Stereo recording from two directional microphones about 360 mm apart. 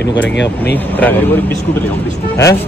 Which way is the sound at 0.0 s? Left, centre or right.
Left.